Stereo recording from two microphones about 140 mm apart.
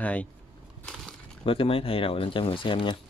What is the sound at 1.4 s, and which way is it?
Speech, 40° left (ahead or behind).